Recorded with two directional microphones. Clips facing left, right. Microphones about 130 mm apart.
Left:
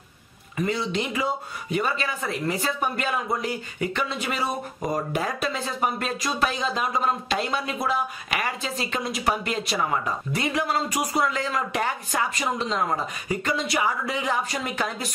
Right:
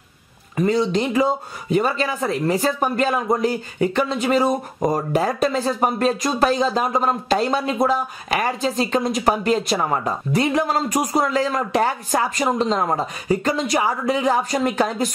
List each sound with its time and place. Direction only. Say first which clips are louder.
0.6 s speech: right 7 dB; 35° right (ahead or behind)